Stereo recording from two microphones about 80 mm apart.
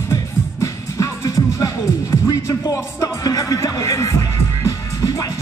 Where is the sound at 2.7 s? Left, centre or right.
Left.